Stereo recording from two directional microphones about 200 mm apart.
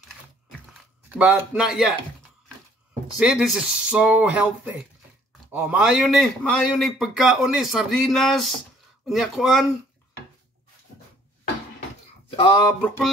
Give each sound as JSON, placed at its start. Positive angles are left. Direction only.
{"t": 1.1, "sound": "a man's voice", "side_deg": -5}
{"t": 3.2, "sound": "a man's voice", "side_deg": -5}
{"t": 5.5, "sound": "a man's voice", "side_deg": -5}
{"t": 12.3, "sound": "a sound", "side_deg": 25}